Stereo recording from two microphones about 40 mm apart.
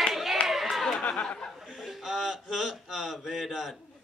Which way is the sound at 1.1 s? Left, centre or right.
Left.